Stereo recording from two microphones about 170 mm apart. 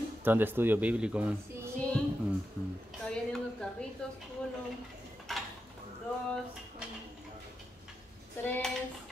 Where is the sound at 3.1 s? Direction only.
5° left (ahead or behind).